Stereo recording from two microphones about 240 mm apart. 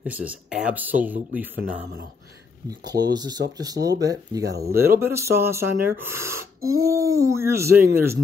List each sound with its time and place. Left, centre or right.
0.0 s speech: centre
2.9 s speech: centre